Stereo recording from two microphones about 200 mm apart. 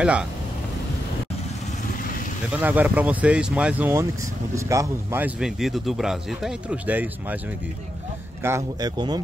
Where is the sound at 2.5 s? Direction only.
10° right (ahead or behind).